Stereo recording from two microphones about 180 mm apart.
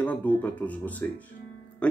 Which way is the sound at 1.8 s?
5° left (ahead or behind).